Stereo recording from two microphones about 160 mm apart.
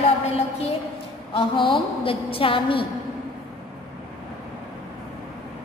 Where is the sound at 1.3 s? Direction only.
35° left (ahead or behind).